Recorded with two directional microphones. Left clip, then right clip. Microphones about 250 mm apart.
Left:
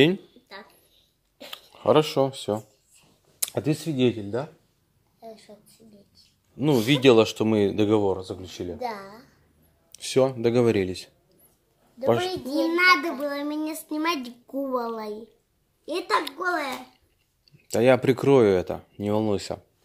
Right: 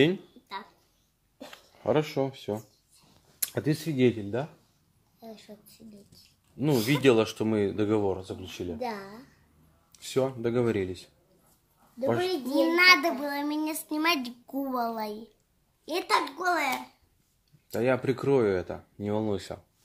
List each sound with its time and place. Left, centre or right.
1.5 s speech: left
6.5 s speech: centre
8.7 s speech: centre
9.9 s speech: left
12.4 s a child's voice: centre
16.3 s a child's voice: centre
17.6 s speech: left